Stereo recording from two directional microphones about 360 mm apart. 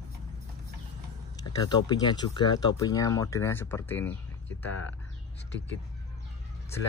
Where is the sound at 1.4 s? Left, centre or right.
Centre.